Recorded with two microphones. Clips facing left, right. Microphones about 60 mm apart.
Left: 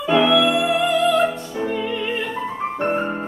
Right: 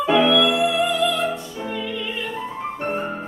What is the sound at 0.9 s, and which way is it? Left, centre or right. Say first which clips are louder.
Music: left 4 dB; left.